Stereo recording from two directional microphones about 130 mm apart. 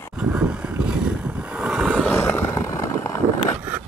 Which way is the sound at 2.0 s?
20° left (ahead or behind).